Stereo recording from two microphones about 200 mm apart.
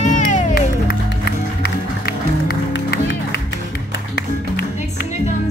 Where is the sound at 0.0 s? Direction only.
40° left (ahead or behind); by 3.3 s 60° left (ahead or behind).